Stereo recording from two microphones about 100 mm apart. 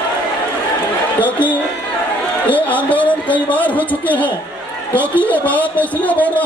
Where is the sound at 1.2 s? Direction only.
15° left (ahead or behind).